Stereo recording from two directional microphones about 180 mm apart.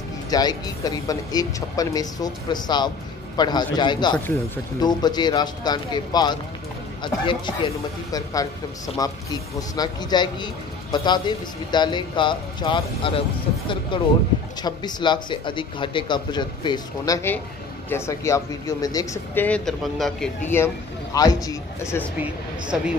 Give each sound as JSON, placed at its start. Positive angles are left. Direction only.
{"t": 0.3, "sound": "speech", "side_deg": 20}
{"t": 19.4, "sound": "a man's voice", "side_deg": 5}
{"t": 20.4, "sound": "speech", "side_deg": 15}